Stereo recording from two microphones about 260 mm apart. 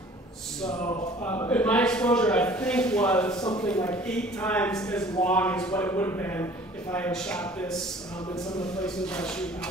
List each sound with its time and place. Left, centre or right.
0.6 s a sound: centre
3.6 s a man's voice: centre
8.7 s a man's voice: centre